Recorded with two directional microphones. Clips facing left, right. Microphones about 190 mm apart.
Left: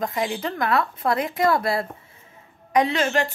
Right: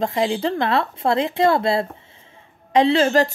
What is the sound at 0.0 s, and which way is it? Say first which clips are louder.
Speech: right 5 dB; 25° right (ahead or behind).